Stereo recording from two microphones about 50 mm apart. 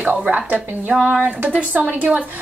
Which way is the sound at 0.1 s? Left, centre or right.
Right.